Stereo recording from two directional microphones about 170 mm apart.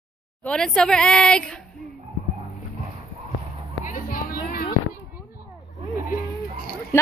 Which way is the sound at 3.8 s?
55° left (ahead or behind).